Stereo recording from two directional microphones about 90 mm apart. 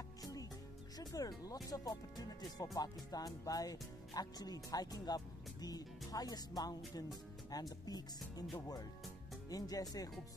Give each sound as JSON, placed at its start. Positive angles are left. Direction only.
{"t": 0.2, "sound": "music", "side_deg": 40}
{"t": 0.9, "sound": "speech", "side_deg": 40}
{"t": 7.8, "sound": "speech", "side_deg": 45}